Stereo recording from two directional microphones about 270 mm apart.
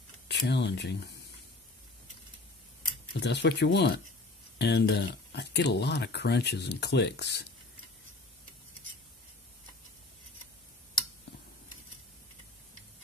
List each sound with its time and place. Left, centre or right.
0.3 s speech: left
3.1 s speech: left